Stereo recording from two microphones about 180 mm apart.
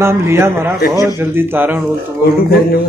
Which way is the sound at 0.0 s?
15° right (ahead or behind).